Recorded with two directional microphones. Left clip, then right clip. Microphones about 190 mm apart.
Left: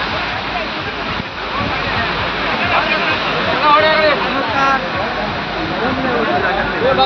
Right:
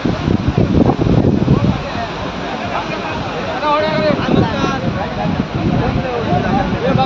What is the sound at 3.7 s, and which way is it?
Boat, 60° right (ahead or behind).